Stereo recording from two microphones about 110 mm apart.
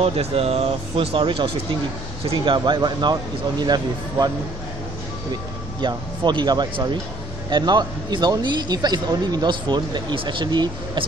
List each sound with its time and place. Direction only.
0.0 s speech: 65° right (ahead or behind); by 4.3 s 40° right (ahead or behind)
5.3 s speech: 40° right (ahead or behind)